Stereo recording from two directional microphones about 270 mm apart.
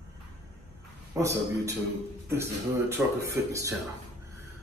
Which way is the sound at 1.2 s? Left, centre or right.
Centre.